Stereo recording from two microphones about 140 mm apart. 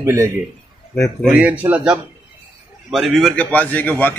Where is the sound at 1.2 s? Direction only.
5° right (ahead or behind).